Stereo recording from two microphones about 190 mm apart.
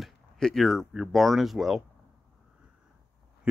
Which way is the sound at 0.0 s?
Centre (ahead or behind).